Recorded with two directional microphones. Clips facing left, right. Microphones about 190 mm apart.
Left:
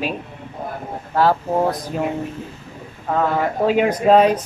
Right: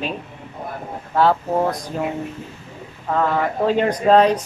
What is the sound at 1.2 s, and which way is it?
Speech, 5° left (ahead or behind).